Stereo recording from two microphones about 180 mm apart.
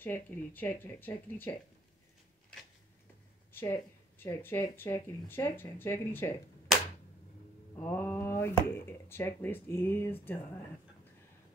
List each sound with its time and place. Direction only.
0.0 s speech: 10° left (ahead or behind)
3.5 s speech: 15° left (ahead or behind)
7.7 s speech: 10° left (ahead or behind)